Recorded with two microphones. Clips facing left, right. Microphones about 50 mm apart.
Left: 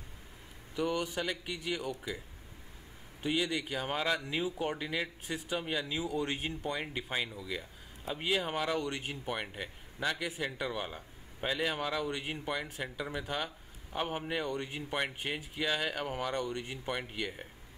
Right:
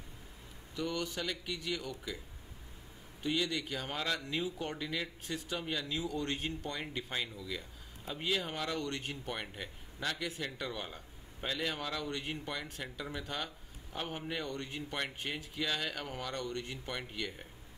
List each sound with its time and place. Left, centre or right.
0.7 s speech: centre
3.2 s speech: centre